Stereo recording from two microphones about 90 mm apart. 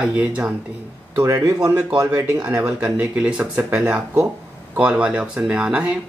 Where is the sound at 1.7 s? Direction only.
20° right (ahead or behind).